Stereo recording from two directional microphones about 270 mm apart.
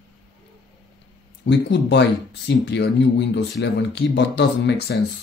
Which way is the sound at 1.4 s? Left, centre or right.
Left.